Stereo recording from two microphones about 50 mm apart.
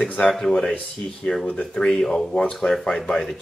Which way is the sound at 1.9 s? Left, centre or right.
Centre.